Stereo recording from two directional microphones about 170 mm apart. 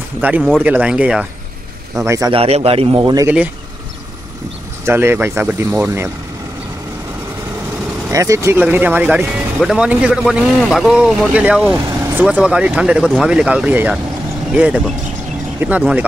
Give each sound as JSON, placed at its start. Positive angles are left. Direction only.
{"t": 0.2, "sound": "speech", "side_deg": -10}
{"t": 2.0, "sound": "speech", "side_deg": -20}
{"t": 2.3, "sound": "speech", "side_deg": -35}
{"t": 4.8, "sound": "speech", "side_deg": -15}
{"t": 8.1, "sound": "a man's voice", "side_deg": -20}